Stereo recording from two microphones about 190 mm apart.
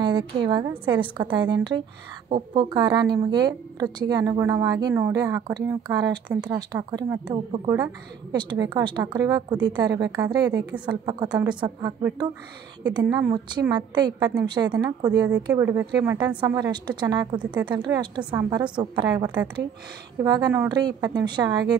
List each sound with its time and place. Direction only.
0.0 s a woman's voice: 25° right (ahead or behind)
13.1 s a woman's voice: 20° right (ahead or behind)